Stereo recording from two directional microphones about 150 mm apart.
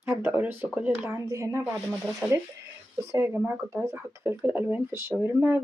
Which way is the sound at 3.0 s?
20° right (ahead or behind).